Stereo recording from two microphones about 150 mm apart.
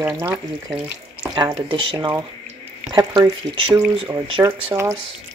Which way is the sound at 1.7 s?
35° right (ahead or behind).